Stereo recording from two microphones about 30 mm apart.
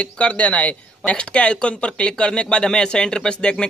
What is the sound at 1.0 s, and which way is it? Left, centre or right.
Speech, left.